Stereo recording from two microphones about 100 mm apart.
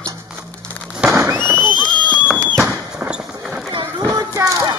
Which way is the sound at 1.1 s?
25° right (ahead or behind).